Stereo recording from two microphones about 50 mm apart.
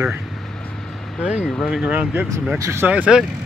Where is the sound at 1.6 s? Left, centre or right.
Centre.